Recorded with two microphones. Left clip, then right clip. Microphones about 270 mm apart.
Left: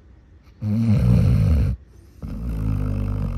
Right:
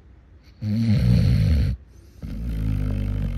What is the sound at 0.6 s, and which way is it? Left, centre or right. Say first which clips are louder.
Snoring: left 2 dB; left.